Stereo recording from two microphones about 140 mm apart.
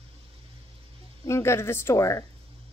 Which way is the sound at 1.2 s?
20° left (ahead or behind).